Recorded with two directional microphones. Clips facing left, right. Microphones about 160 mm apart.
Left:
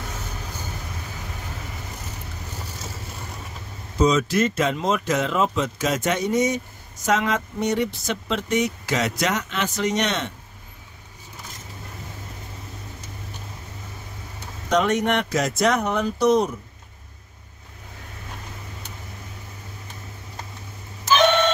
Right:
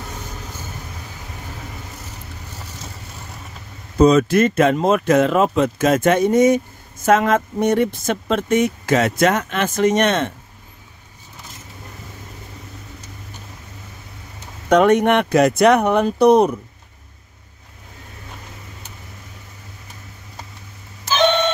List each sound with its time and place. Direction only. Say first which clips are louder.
4.0 s speech: right 6 dB; 55° right (ahead or behind)
14.7 s speech: right 7 dB; 55° right (ahead or behind)